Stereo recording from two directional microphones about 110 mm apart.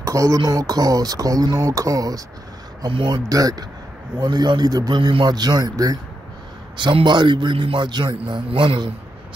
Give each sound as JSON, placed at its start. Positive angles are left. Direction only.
{"t": 0.0, "sound": "speech", "side_deg": -30}
{"t": 2.9, "sound": "a man's voice", "side_deg": -50}
{"t": 3.3, "sound": "speech", "side_deg": -35}
{"t": 6.8, "sound": "a man's voice", "side_deg": -45}
{"t": 8.2, "sound": "a man's voice", "side_deg": -55}